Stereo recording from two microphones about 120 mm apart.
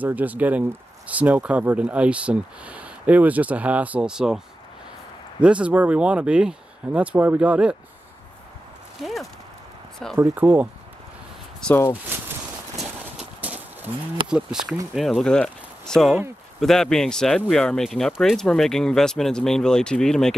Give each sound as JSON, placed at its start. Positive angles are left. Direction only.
{"t": 0.0, "sound": "speech", "side_deg": -15}
{"t": 5.4, "sound": "speech", "side_deg": -10}
{"t": 9.0, "sound": "speech", "side_deg": 0}
{"t": 10.3, "sound": "speech", "side_deg": -15}
{"t": 11.6, "sound": "speech", "side_deg": 5}
{"t": 12.1, "sound": "walk", "side_deg": -15}
{"t": 13.0, "sound": "horse", "side_deg": -10}
{"t": 14.2, "sound": "speech", "side_deg": -5}